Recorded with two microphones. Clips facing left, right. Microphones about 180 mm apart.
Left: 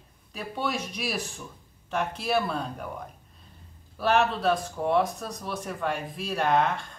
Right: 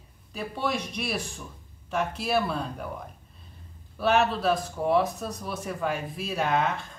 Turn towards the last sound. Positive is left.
turn(degrees=0)  # may be behind; listen again after turning